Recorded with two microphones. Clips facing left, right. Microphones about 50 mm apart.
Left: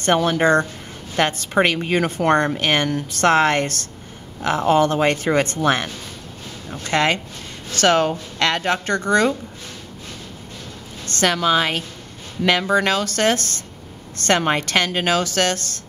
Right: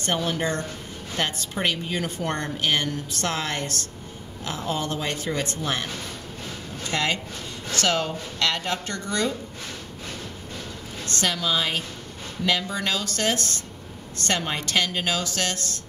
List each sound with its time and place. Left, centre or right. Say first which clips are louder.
0.0 s a woman's voice: left 8 dB; left
11.1 s a woman's voice: left 7 dB; left